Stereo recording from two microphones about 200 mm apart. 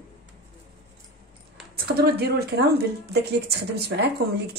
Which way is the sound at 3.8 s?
55° right (ahead or behind).